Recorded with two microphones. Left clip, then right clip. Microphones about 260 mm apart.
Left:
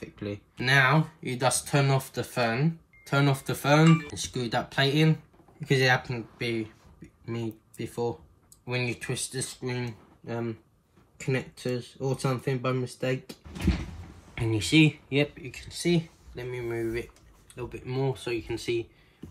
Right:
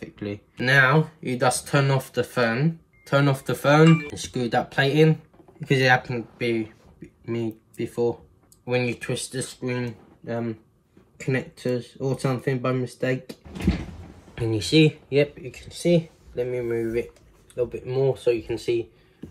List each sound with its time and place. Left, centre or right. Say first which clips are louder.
0.0 s speech: right 3 dB; centre
16.6 s speech: right 5 dB; left
18.1 s speech: right 9 dB; centre